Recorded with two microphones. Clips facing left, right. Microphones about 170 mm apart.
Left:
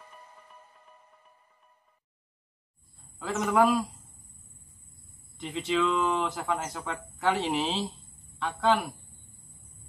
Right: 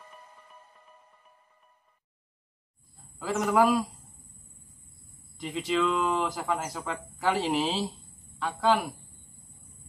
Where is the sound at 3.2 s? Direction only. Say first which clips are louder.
Even; centre (ahead or behind).